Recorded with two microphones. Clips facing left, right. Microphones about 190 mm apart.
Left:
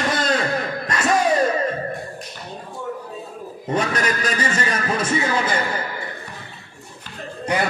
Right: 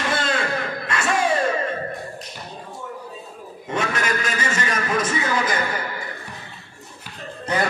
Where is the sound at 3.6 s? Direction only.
35° left (ahead or behind).